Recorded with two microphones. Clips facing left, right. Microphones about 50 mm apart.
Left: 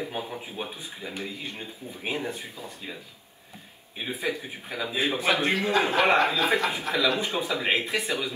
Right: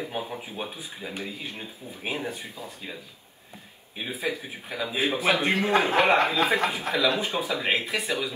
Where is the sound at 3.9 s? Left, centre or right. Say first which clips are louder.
Even; centre.